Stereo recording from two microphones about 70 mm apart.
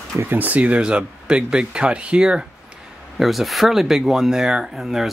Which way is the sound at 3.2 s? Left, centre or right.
Centre.